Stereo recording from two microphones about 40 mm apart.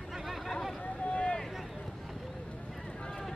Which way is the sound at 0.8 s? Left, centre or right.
Left.